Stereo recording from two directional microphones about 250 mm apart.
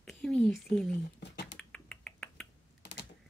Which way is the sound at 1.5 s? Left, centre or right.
Centre.